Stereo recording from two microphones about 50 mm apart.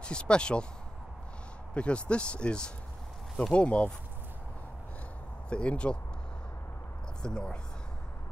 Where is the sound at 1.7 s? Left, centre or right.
Left.